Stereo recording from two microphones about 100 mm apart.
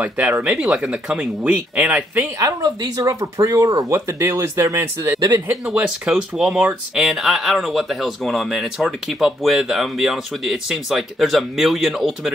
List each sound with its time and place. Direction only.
0.4 s speech: 10° right (ahead or behind)
2.3 s speech: 35° right (ahead or behind)
5.7 s speech: 10° right (ahead or behind)